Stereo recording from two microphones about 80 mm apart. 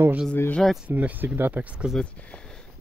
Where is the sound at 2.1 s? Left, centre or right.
Centre.